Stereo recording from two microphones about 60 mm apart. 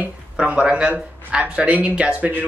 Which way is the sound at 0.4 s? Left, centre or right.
Centre.